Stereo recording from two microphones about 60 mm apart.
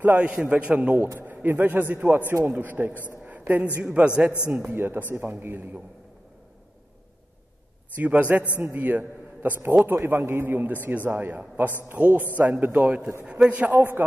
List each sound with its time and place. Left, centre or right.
0.0 s a man's voice: right
1.2 s a man's voice: right
3.3 s a sound: right
3.8 s a man's voice: centre
4.5 s a man's voice: right
7.9 s a man's voice: right